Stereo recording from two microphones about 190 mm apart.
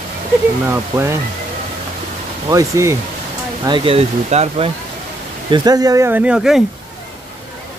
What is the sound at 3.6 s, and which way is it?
Speech, 25° right (ahead or behind).